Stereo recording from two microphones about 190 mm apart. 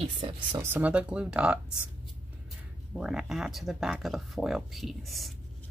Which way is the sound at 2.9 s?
Centre (ahead or behind).